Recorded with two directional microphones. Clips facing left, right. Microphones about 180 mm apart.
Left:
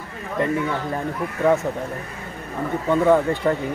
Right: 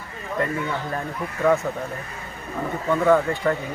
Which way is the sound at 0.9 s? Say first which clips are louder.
Left 3 dB; 20° left (ahead or behind).